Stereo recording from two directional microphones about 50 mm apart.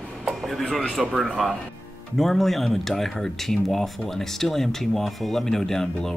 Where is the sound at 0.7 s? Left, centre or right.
Centre.